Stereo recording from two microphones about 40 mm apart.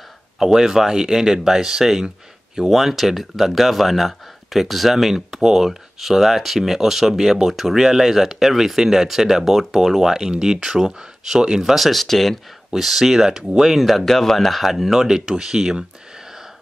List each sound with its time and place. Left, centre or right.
0.4 s speech: centre
11.7 s speech: centre
12.7 s speech: centre
13.7 s speech: centre